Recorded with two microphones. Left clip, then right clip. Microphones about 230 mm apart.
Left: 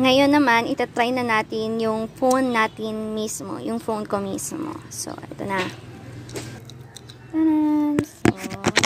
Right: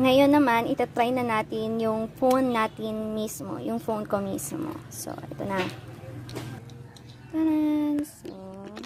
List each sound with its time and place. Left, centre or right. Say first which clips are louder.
0.0 s a woman's voice: left 3 dB; centre
7.3 s a woman's voice: left 5 dB; centre